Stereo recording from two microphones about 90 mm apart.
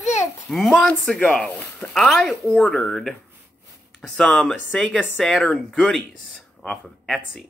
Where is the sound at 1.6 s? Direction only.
15° left (ahead or behind).